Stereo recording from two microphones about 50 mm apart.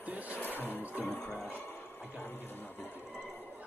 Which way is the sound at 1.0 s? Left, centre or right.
Centre.